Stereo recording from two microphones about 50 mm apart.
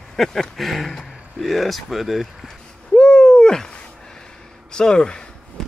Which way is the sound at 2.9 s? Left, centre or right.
Centre.